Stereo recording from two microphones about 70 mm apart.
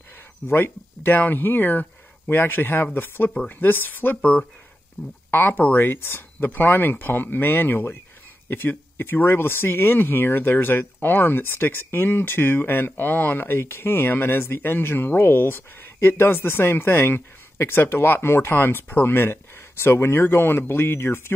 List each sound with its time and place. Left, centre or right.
0.5 s speech: left